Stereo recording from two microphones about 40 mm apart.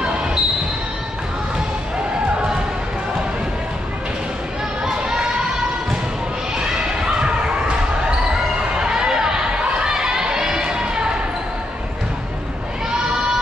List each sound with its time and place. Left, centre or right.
0.0 s basketball bounce: centre
4.8 s crowd: centre
7.2 s a sound: right